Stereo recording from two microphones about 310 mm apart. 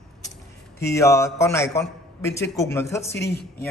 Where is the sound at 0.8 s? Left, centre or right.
Centre.